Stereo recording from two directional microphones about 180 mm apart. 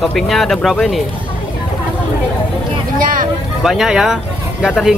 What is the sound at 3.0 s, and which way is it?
Vehicle, 50° right (ahead or behind).